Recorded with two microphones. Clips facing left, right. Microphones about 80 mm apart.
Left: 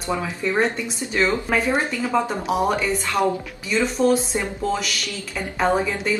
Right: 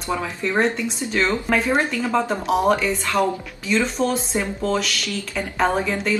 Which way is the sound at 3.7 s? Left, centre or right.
Centre.